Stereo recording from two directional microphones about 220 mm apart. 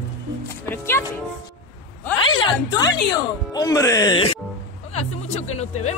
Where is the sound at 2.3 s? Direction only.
20° left (ahead or behind).